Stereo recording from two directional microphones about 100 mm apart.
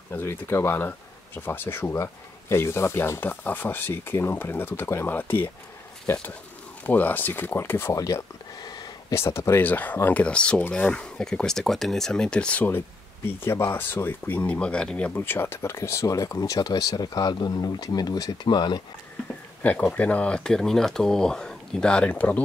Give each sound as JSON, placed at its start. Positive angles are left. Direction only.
{"t": 0.1, "sound": "speech", "side_deg": 25}
{"t": 6.8, "sound": "speech", "side_deg": 15}
{"t": 9.1, "sound": "speech", "side_deg": 25}
{"t": 9.7, "sound": "speech", "side_deg": 15}
{"t": 19.6, "sound": "speech", "side_deg": 15}